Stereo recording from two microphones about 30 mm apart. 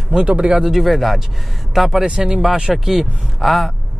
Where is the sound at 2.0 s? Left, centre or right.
Right.